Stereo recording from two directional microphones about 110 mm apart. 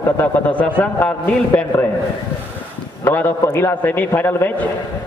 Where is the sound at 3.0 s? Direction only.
15° left (ahead or behind).